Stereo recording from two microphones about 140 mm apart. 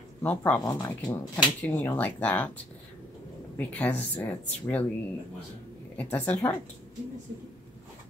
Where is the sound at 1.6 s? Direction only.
15° left (ahead or behind).